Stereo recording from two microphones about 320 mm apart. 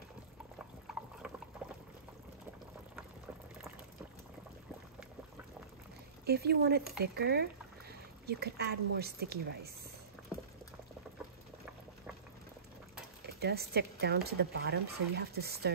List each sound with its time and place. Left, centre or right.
6.2 s speech: right
13.2 s speech: right